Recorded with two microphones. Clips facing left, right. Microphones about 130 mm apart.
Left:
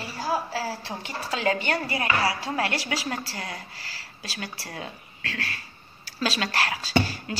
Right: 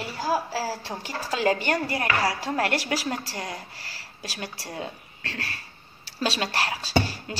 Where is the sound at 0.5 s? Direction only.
35° right (ahead or behind).